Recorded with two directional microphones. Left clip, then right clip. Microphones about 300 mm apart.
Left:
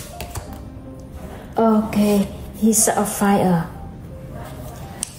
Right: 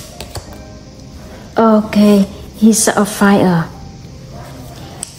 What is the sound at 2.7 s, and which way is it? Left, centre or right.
Speech, right.